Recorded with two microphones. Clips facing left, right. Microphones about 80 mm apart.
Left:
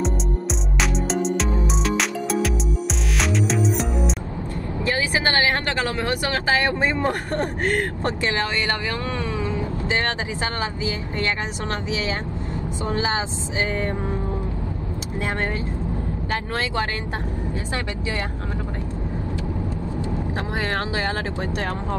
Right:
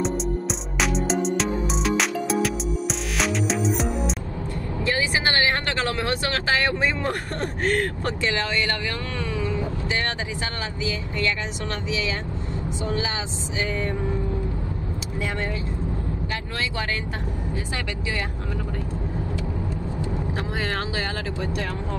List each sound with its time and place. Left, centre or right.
0.7 s music: centre
4.8 s speech: left
9.2 s a sound: left
10.6 s speech: left
12.8 s speech: left
20.5 s speech: left